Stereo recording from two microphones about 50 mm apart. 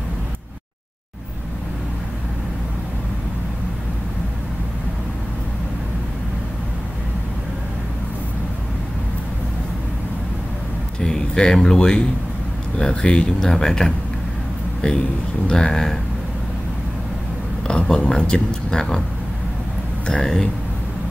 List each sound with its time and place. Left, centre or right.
11.0 s a sound: centre
12.7 s speech: centre
17.6 s speech: centre
20.1 s speech: centre